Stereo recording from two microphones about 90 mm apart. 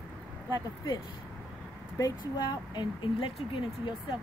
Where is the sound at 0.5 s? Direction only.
45° left (ahead or behind).